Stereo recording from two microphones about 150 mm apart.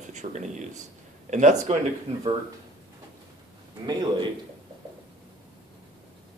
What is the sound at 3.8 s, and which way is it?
Speech, 25° right (ahead or behind).